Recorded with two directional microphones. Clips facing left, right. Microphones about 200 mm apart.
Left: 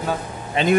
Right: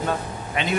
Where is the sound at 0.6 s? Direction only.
30° left (ahead or behind).